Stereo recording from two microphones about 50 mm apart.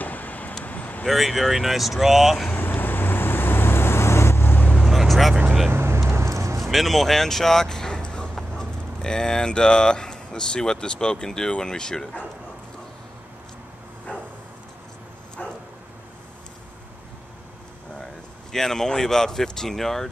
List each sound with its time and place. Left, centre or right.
0.0 s vehicle: left
1.0 s speech: centre
2.5 s vehicle: left
4.7 s vehicle: centre
5.7 s vehicle: right
6.6 s speech: centre
18.5 s speech: centre